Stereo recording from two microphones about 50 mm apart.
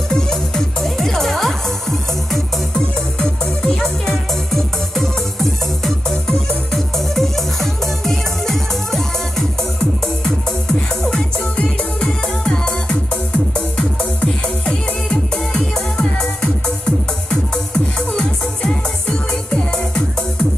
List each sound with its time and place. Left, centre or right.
0.1 s music: centre